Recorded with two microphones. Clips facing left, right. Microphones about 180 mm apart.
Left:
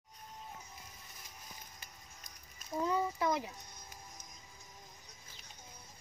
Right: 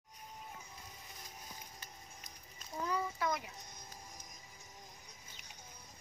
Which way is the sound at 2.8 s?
25° left (ahead or behind).